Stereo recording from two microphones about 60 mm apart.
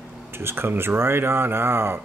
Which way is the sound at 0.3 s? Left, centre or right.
Right.